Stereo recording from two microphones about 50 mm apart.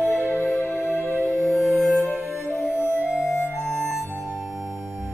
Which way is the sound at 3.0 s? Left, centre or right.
Right.